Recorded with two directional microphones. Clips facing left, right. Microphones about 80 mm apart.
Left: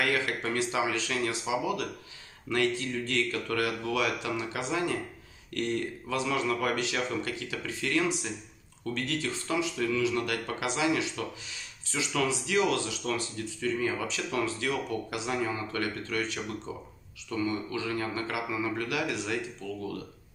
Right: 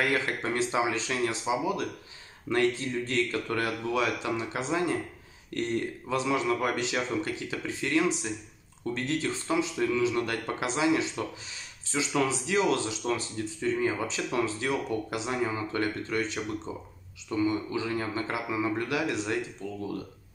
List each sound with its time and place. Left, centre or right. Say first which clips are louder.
0.0 s speech: right 1 dB; right